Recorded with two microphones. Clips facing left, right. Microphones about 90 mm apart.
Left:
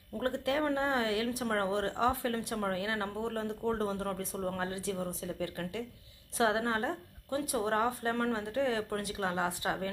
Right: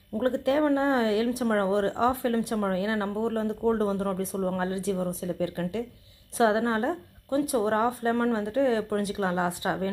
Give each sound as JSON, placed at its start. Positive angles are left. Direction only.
{"t": 0.2, "sound": "speech", "side_deg": -20}